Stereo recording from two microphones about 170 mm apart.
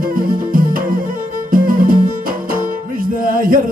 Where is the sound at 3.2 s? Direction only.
55° right (ahead or behind).